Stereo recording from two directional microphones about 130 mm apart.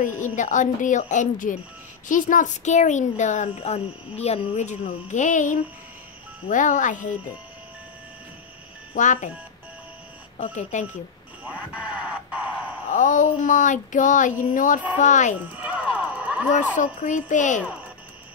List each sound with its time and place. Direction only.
0.0 s speech: 75° left (ahead or behind)
8.9 s speech: 70° left (ahead or behind)
10.3 s speech: 70° left (ahead or behind)
11.7 s a sound: 10° right (ahead or behind)
12.9 s speech: 75° left (ahead or behind)
15.6 s a sound: 10° right (ahead or behind)
16.5 s speech: 75° left (ahead or behind)